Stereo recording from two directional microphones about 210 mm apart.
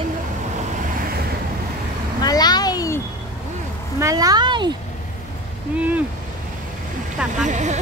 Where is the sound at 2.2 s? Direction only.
20° left (ahead or behind).